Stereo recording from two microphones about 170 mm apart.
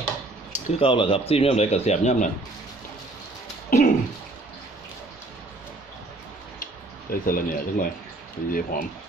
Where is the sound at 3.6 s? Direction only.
60° left (ahead or behind).